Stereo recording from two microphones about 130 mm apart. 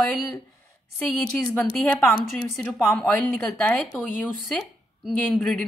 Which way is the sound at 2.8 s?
20° left (ahead or behind).